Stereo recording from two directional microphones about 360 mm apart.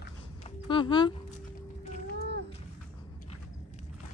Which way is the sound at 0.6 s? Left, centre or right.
Centre.